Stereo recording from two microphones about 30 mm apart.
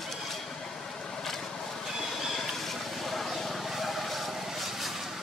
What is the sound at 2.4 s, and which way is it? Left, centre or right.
Vehicle, centre.